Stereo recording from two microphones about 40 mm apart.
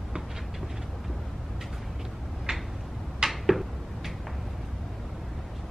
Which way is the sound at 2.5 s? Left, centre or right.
Right.